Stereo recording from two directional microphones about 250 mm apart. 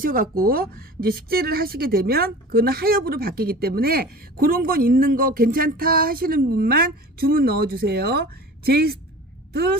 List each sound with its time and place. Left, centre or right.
0.0 s a woman's voice: right